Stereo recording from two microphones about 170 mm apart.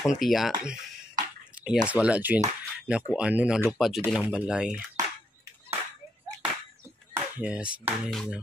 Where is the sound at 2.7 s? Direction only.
5° right (ahead or behind).